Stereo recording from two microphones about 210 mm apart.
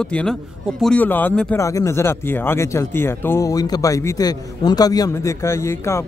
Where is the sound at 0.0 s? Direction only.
5° left (ahead or behind).